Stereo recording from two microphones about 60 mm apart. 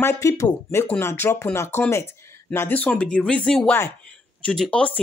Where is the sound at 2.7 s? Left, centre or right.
Left.